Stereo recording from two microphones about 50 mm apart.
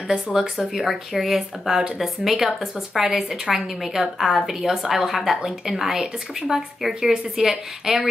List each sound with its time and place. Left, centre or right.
0.1 s speech: centre